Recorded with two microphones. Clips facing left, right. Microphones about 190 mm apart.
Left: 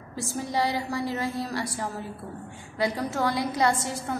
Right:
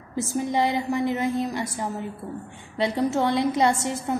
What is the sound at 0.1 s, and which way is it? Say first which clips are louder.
A woman's voice: right 5 dB; 20° right (ahead or behind).